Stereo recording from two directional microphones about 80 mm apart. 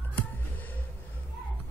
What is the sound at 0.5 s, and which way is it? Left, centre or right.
Music, left.